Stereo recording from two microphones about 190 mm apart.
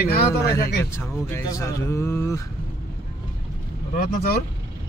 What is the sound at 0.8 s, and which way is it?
Speech, 10° left (ahead or behind).